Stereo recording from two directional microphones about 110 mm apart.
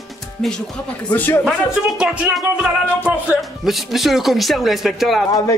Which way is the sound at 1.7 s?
5° right (ahead or behind).